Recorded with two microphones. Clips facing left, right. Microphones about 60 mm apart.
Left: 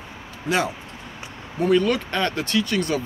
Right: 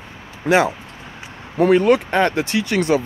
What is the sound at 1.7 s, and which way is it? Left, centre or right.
Speech, right.